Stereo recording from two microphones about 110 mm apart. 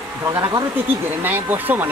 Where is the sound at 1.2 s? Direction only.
15° right (ahead or behind).